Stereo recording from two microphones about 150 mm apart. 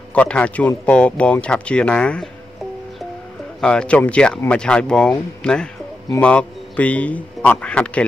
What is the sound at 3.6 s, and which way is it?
A man's voice, 5° left (ahead or behind).